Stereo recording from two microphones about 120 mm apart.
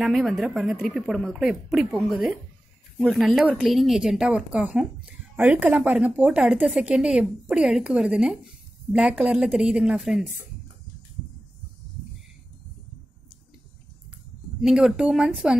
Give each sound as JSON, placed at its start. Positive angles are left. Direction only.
{"t": 0.0, "sound": "speech", "side_deg": 0}
{"t": 14.6, "sound": "speech", "side_deg": -5}